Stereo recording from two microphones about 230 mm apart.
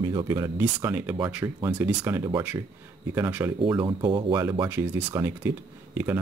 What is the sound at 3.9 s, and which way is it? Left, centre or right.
Speech, centre.